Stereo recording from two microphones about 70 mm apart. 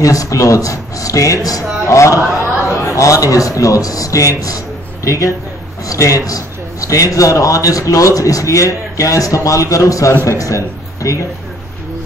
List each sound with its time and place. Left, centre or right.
0.0 s a man's voice: left
2.2 s chatter: centre
2.7 s a man's voice: left